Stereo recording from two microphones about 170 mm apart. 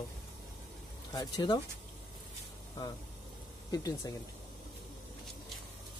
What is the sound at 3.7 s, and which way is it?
Speech, 20° left (ahead or behind).